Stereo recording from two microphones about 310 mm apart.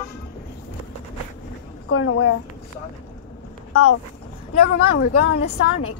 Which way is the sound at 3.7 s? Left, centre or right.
Left.